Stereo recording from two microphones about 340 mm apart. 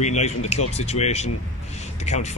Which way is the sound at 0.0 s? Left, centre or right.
Centre.